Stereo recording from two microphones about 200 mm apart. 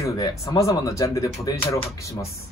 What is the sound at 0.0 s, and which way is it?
Speech, 15° left (ahead or behind).